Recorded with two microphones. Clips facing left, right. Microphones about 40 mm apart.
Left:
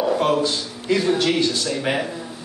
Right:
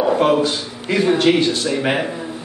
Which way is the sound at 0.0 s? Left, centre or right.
Centre.